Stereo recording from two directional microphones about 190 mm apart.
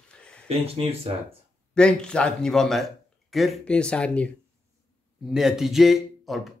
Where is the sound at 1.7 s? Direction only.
5° left (ahead or behind).